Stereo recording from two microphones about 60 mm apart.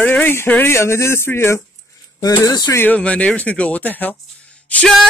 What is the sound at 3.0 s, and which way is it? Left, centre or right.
Speech, left.